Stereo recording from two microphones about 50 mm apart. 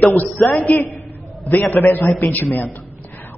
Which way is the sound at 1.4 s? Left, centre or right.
Left.